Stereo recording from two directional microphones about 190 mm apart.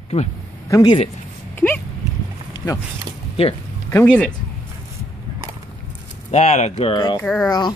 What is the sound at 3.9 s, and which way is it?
Speech, 10° left (ahead or behind).